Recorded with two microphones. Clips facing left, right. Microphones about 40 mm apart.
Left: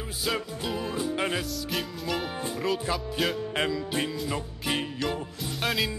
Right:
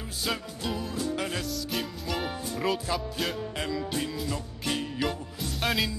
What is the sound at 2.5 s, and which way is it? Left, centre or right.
Speech, centre.